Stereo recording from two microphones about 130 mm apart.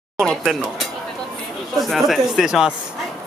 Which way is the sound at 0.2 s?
5° left (ahead or behind).